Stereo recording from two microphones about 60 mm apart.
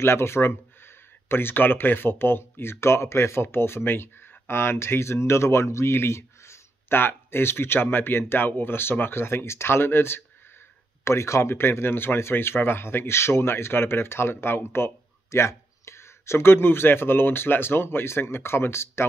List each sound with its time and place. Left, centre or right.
0.0 s speech: left
11.1 s speech: left
11.5 s speech: left